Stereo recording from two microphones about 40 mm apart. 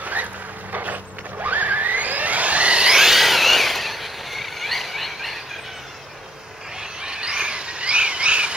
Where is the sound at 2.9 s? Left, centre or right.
Centre.